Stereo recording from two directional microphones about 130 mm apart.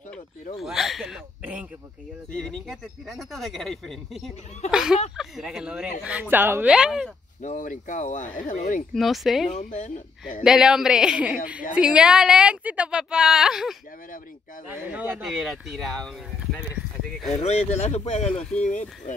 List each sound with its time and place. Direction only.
0.6 s speech: centre (ahead or behind)
1.4 s speech: 10° right (ahead or behind)
2.3 s speech: 5° left (ahead or behind)
7.4 s speech: 75° left (ahead or behind)
8.9 s speech: centre (ahead or behind)
9.5 s speech: 65° left (ahead or behind)
10.4 s speech: 5° right (ahead or behind)
17.3 s speech: 60° left (ahead or behind)
18.6 s speech: 75° left (ahead or behind)